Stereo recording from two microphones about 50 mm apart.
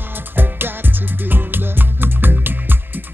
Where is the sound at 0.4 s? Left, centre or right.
Right.